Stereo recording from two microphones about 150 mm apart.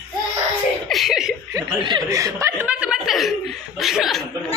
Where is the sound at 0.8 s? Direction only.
Centre (ahead or behind).